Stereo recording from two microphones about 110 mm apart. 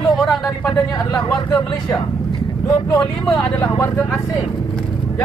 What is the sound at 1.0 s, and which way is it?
Speech, 40° left (ahead or behind).